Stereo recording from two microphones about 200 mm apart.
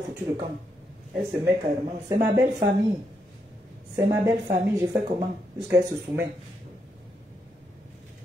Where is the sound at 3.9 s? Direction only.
20° right (ahead or behind).